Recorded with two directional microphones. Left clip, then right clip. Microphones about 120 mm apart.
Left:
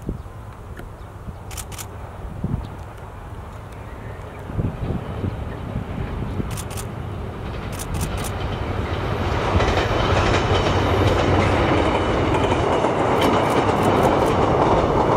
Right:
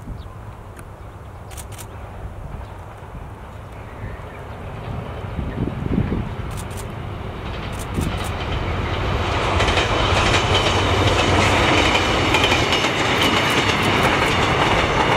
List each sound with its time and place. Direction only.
4.8 s vehicle: centre (ahead or behind)
6.5 s vehicle: 35° left (ahead or behind)
7.4 s vehicle: 5° right (ahead or behind)
8.1 s train: 5° right (ahead or behind); by 14.0 s 30° right (ahead or behind)
14.1 s train: 40° right (ahead or behind)